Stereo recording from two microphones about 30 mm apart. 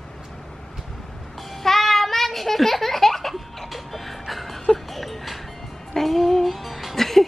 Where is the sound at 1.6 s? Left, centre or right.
Centre.